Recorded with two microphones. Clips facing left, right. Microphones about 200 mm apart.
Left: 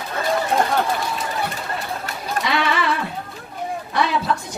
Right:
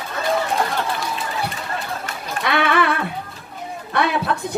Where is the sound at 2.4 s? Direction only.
55° right (ahead or behind).